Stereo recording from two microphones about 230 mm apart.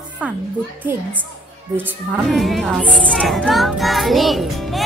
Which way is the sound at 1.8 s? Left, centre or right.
Centre.